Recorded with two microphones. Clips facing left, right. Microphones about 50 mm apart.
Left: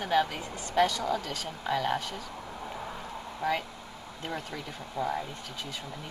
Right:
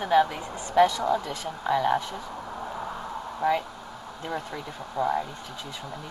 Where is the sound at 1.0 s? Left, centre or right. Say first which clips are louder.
Right 5 dB; right.